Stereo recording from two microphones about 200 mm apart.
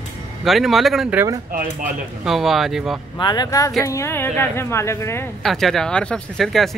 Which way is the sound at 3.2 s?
20° left (ahead or behind).